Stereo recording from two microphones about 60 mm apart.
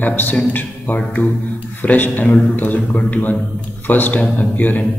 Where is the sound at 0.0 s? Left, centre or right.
Left.